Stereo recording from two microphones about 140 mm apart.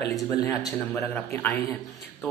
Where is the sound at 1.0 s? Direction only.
15° left (ahead or behind).